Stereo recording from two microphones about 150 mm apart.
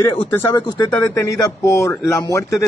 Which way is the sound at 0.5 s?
30° left (ahead or behind).